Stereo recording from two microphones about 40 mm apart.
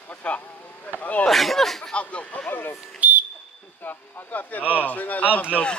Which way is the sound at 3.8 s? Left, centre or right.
Left.